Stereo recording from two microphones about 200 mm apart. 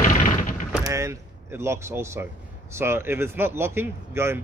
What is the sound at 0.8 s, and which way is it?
Speech, 15° right (ahead or behind).